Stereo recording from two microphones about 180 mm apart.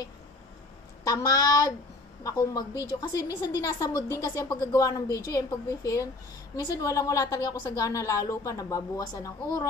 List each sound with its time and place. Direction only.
1.0 s a woman's voice: 20° left (ahead or behind)